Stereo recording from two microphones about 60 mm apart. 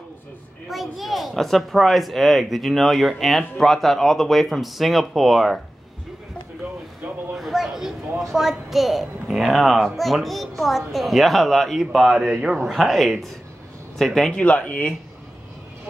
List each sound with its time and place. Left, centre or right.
0.7 s speech: centre
7.3 s a sound: centre
8.2 s speech: centre
14.3 s speech: left